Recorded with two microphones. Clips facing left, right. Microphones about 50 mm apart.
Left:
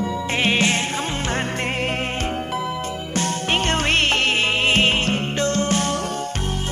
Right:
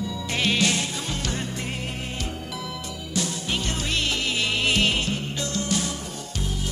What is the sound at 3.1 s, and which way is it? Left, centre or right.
Music, left.